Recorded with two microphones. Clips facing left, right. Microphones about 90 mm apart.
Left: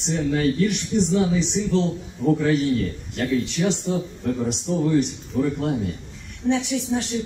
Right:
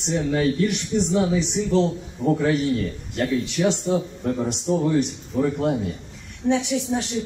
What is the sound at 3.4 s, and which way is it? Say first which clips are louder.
A man's voice: right 2 dB; 15° right (ahead or behind).